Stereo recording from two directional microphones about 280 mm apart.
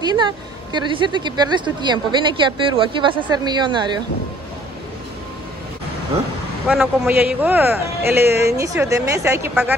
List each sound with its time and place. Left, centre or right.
0.0 s a woman's voice: centre
6.7 s speech: centre